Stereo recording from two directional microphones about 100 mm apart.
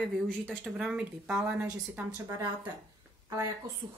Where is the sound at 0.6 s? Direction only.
5° right (ahead or behind).